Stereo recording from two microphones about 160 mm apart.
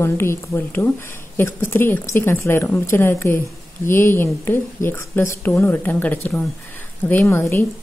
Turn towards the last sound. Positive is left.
turn(degrees=15)  # may be behind; listen again after turning